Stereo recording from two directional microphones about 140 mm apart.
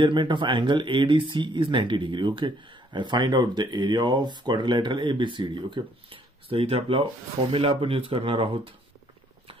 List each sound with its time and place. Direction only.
0.0 s speech: 35° right (ahead or behind)